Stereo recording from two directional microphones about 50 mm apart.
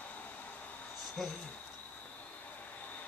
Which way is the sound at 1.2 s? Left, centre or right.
Centre.